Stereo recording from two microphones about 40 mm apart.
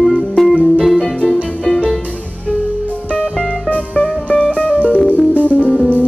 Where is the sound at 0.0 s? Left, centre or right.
Centre.